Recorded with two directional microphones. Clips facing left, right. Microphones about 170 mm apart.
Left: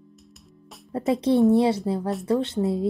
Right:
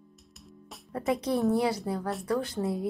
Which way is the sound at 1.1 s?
30° left (ahead or behind).